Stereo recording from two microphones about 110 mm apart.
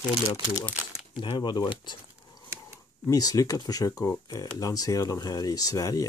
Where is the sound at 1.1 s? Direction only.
45° left (ahead or behind).